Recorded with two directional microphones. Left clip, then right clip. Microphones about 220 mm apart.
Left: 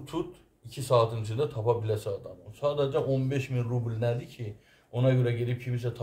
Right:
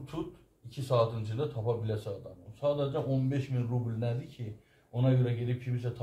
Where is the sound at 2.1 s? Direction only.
50° left (ahead or behind).